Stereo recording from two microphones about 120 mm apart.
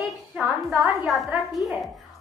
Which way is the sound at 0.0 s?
Centre (ahead or behind).